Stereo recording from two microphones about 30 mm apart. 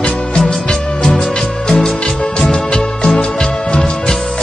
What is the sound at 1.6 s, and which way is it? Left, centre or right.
Music, centre.